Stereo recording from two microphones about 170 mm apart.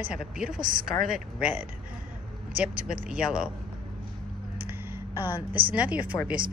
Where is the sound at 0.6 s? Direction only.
55° right (ahead or behind).